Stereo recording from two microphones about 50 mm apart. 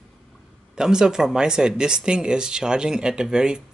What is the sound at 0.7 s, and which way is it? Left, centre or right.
Speech, centre.